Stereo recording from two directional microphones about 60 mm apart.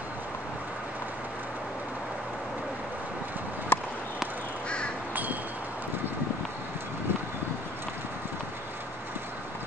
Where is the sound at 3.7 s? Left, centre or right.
Left.